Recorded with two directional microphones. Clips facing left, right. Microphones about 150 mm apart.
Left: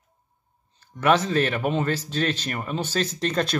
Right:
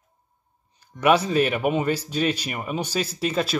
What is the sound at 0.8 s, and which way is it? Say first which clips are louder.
Speech: right 1 dB; 15° right (ahead or behind).